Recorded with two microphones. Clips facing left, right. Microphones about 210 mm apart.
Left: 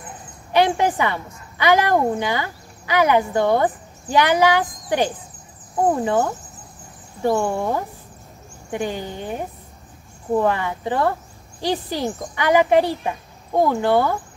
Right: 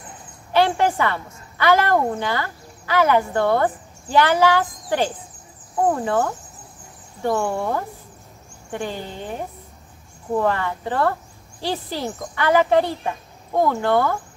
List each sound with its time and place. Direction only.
0.5 s a woman's voice: 15° left (ahead or behind)
7.3 s speech: 15° left (ahead or behind)